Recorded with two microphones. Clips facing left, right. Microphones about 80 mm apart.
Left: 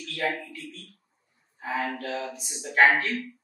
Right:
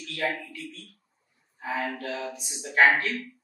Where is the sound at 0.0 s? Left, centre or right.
Centre.